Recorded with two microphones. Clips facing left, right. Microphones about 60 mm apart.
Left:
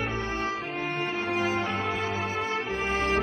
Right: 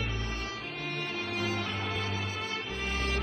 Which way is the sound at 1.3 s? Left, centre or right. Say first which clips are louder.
Left 6 dB; left.